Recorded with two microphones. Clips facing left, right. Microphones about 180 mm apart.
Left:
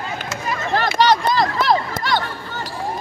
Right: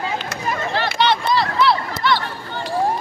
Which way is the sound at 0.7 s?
45° left (ahead or behind).